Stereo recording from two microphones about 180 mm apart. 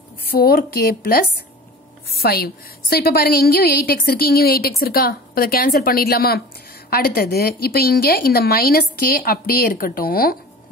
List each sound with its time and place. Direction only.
0.2 s a woman's voice: 60° left (ahead or behind)